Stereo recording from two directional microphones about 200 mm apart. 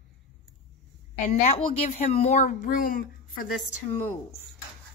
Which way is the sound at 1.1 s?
35° left (ahead or behind).